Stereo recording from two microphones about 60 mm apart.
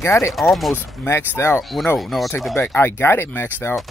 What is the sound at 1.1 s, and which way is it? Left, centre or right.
Speech, left.